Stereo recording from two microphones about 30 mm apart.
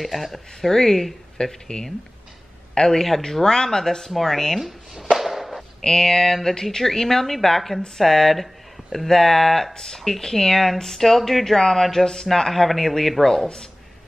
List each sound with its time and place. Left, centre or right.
0.0 s speech: centre
0.7 s speech: centre
1.4 s a man's voice: left
5.1 s a sound: centre
5.9 s speech: centre